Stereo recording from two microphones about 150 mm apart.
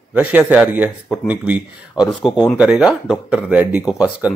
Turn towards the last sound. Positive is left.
turn(degrees=-5)  # may be behind; listen again after turning